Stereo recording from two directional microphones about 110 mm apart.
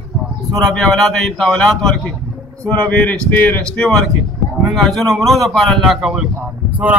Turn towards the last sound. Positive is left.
turn(degrees=-15)  # may be behind; listen again after turning